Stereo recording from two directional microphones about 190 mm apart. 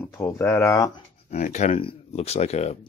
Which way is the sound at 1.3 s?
40° left (ahead or behind).